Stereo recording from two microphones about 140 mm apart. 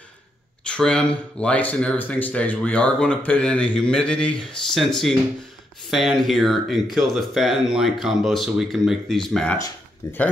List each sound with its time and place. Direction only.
0.7 s speech: 5° left (ahead or behind)
10.0 s speech: 20° left (ahead or behind)